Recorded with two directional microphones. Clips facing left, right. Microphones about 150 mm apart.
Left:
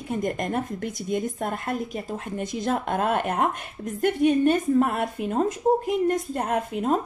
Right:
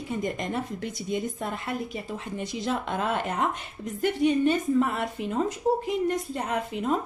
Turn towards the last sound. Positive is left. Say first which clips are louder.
# left 3 dB
turn(degrees=45)  # may be behind; listen again after turning